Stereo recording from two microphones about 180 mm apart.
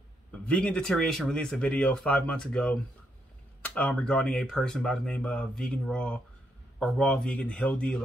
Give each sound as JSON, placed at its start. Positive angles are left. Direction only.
{"t": 0.3, "sound": "speech", "side_deg": 5}